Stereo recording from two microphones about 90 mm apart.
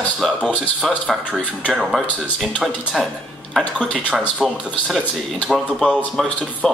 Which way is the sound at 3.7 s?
15° left (ahead or behind).